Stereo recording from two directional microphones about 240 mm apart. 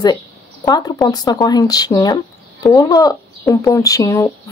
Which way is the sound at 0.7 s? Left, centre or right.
Centre.